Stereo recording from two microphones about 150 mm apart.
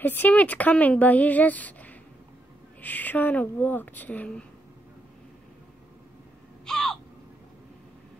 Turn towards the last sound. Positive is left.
turn(degrees=5)  # may be behind; listen again after turning